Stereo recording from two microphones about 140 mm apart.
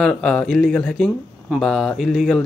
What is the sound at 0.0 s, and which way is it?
Speech, 5° left (ahead or behind).